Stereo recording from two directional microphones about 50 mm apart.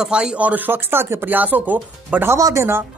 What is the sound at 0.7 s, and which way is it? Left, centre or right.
Speech, right.